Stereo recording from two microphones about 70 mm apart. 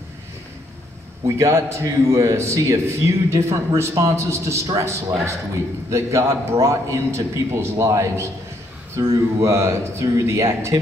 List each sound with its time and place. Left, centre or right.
1.2 s a man's voice: right